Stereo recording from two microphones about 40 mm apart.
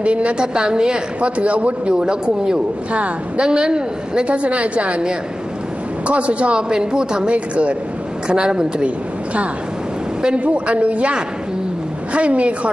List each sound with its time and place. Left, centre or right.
0.0 s a man's voice: right
2.0 s a man's voice: right
2.9 s a man's voice: right
3.4 s a man's voice: right
4.3 s a man's voice: right
6.0 s a man's voice: right
7.3 s a man's voice: right
8.3 s a man's voice: right
8.8 s a woman's voice: right